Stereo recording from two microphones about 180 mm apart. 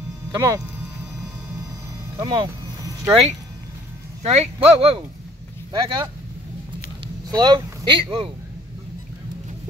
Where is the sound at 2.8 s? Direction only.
20° right (ahead or behind).